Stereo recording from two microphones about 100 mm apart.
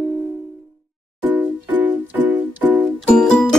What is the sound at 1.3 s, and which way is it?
Music, 15° right (ahead or behind).